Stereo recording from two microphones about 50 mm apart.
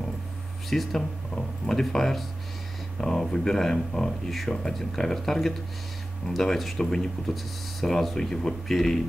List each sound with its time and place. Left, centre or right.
0.7 s speech: centre